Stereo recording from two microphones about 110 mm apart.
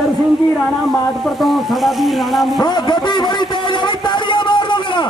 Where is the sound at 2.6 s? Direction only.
40° left (ahead or behind).